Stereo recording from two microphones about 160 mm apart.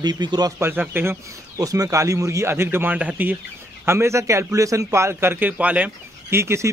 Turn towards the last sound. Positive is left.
turn(degrees=-15)  # may be behind; listen again after turning